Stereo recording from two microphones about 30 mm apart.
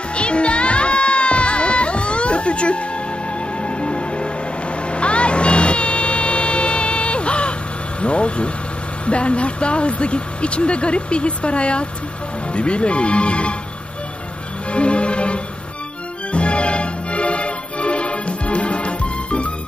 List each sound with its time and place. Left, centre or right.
0.1 s music: left
8.0 s vehicle: left
9.0 s speech: left
14.7 s music: left